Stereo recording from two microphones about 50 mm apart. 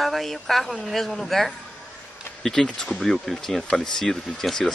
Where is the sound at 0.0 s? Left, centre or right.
Centre.